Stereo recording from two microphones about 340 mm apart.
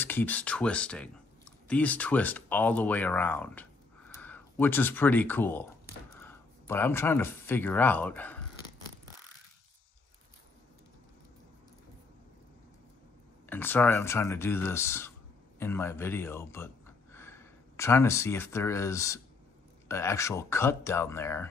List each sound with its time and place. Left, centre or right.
0.0 s speech: centre
13.5 s speech: centre